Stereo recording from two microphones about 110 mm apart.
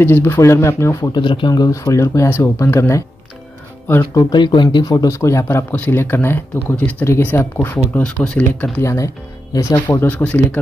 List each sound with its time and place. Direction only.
0.0 s speech: 20° left (ahead or behind)
1.1 s speech: 45° left (ahead or behind)
1.5 s speech: 30° left (ahead or behind)
4.2 s speech: 40° left (ahead or behind); by 7.4 s 20° left (ahead or behind)
8.0 s speech: 5° left (ahead or behind)
8.8 s speech: 30° left (ahead or behind); by 10.6 s 15° left (ahead or behind)